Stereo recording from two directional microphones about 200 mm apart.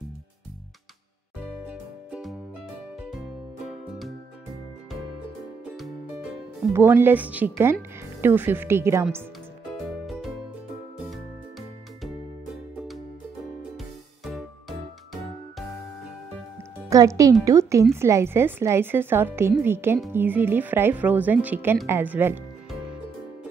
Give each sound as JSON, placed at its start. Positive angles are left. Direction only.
{"t": 1.7, "sound": "music", "side_deg": -5}
{"t": 6.7, "sound": "a woman's voice", "side_deg": -10}
{"t": 9.8, "sound": "music", "side_deg": 0}
{"t": 14.2, "sound": "music", "side_deg": 0}
{"t": 16.9, "sound": "a woman's voice", "side_deg": -15}